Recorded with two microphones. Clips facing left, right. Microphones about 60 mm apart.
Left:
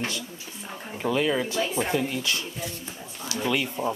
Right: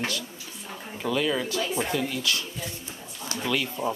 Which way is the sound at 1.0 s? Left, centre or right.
Left.